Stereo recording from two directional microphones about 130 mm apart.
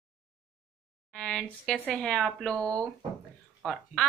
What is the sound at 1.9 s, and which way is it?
Speech, 5° left (ahead or behind).